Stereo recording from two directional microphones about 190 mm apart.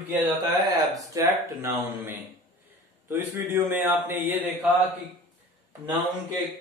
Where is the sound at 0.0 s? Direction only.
10° right (ahead or behind).